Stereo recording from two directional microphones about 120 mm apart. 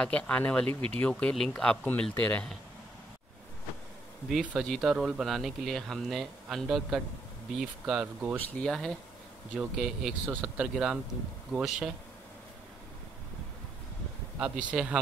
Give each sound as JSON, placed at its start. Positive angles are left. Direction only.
{"t": 0.0, "sound": "speech", "side_deg": 10}
{"t": 4.3, "sound": "speech", "side_deg": -5}
{"t": 8.4, "sound": "speech", "side_deg": 10}
{"t": 10.2, "sound": "speech", "side_deg": -15}
{"t": 14.4, "sound": "speech", "side_deg": -10}